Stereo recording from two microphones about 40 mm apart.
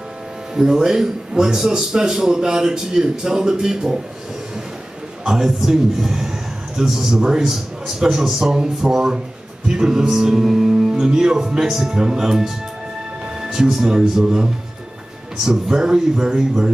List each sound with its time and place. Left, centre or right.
0.6 s a man's voice: centre
5.2 s a man's voice: centre